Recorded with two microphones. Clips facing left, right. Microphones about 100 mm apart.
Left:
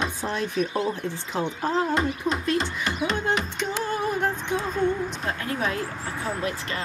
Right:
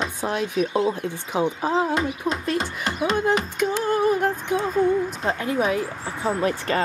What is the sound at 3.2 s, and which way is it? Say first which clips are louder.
Music: right 5 dB; 5° right (ahead or behind).